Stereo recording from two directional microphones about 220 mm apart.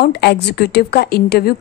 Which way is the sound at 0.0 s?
50° left (ahead or behind).